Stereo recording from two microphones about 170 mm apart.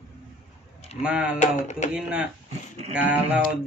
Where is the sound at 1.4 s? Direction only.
45° left (ahead or behind).